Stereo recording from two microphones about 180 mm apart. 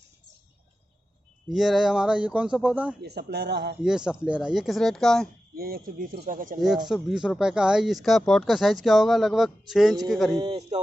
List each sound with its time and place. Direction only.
1.5 s speech: centre (ahead or behind)
3.0 s speech: 65° right (ahead or behind)
3.8 s speech: 5° right (ahead or behind)
5.6 s speech: 55° right (ahead or behind)
6.9 s speech: 5° right (ahead or behind)
10.4 s a man's voice: 25° right (ahead or behind)